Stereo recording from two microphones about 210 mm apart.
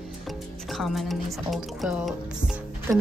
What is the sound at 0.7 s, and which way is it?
A woman's voice, centre (ahead or behind).